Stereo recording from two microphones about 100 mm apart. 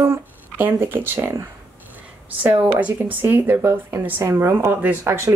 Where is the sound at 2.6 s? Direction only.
20° right (ahead or behind).